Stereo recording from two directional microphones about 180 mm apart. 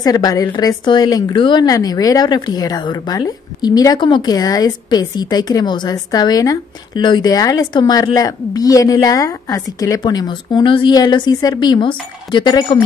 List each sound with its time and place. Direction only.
0.0 s a woman's voice: 20° left (ahead or behind)